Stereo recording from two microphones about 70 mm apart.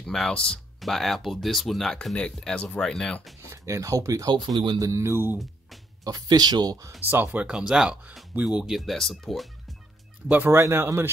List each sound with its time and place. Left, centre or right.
0.0 s speech: centre
0.7 s speech: centre
3.5 s speech: right
6.0 s speech: right
7.1 s speech: right
7.4 s speech: centre
10.2 s speech: right
10.5 s speech: right